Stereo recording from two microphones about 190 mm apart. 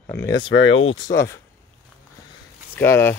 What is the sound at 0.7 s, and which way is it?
Speech, 35° left (ahead or behind).